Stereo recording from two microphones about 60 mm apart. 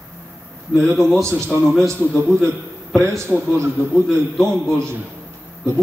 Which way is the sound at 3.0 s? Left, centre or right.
Right.